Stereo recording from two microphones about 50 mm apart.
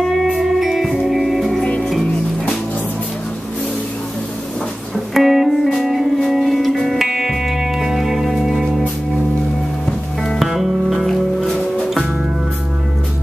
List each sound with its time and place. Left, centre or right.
0.4 s music: centre
4.9 s music: centre
7.1 s music: centre
10.4 s music: centre
11.1 s music: centre